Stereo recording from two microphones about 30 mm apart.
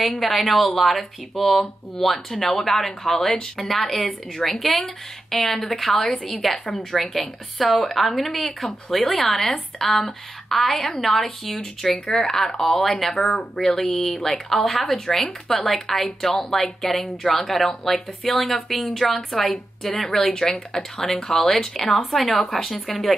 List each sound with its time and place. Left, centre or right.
0.0 s speech: centre
7.2 s speech: centre
20.7 s speech: left; by 23.1 s centre